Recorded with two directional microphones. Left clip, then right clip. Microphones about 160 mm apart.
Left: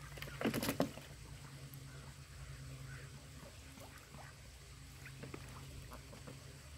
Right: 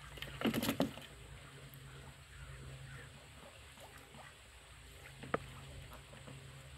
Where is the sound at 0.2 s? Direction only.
Centre (ahead or behind).